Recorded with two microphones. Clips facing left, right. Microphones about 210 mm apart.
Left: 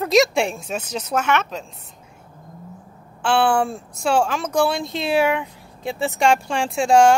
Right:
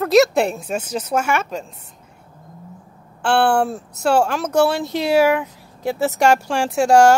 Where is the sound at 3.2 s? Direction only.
5° right (ahead or behind).